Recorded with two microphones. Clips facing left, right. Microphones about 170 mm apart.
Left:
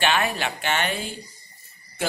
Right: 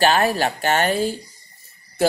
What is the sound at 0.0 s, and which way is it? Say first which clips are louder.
Speech: right 6 dB; 40° right (ahead or behind).